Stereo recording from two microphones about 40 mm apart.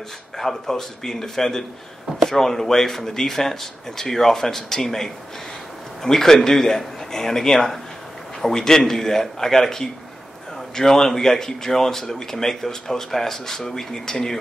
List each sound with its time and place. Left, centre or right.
0.4 s speech: centre